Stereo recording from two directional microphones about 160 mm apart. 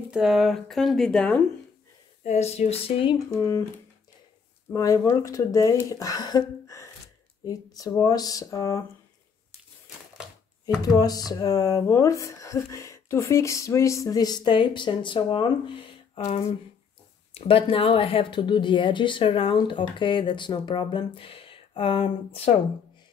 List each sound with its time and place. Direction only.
0.1 s speech: centre (ahead or behind)
2.2 s speech: 45° left (ahead or behind)
3.4 s speech: 15° left (ahead or behind)
10.9 s speech: 25° left (ahead or behind)
16.3 s speech: 40° left (ahead or behind)